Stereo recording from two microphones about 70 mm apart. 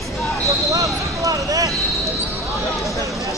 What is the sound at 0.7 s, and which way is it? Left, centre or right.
Basketball bounce, right.